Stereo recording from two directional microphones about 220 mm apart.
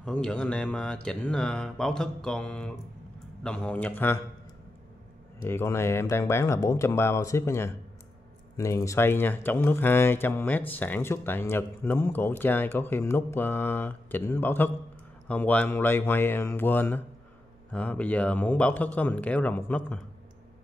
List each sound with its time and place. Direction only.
0.0 s speech: 5° left (ahead or behind)
5.4 s speech: 10° left (ahead or behind)